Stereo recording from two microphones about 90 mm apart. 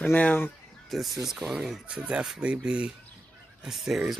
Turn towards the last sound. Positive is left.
turn(degrees=0)  # may be behind; listen again after turning